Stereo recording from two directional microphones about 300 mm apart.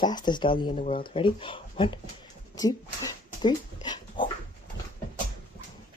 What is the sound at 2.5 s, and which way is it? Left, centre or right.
Dog, centre.